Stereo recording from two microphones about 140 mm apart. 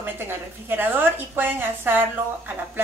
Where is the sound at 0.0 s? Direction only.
15° right (ahead or behind).